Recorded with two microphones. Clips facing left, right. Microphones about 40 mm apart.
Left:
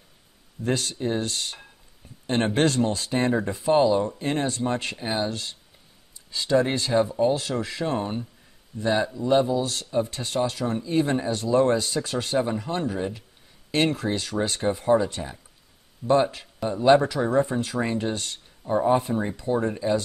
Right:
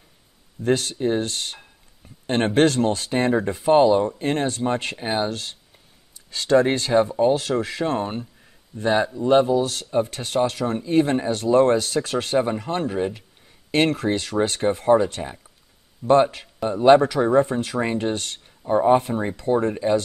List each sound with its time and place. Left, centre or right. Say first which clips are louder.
0.7 s speech: right 5 dB; right
2.5 s speech: right 6 dB; right
6.1 s a sound: right 1 dB; right
6.5 s speech: right 4 dB; right
6.9 s speech: right 2 dB; centre
7.5 s speech: right 4 dB; right
8.0 s speech: right 2 dB; right
14.9 s speech: right 3 dB; centre
16.1 s speech: right 4 dB; right
16.6 s speech: right 4 dB; right
18.1 s speech: right 3 dB; right
18.6 s speech: right 4 dB; centre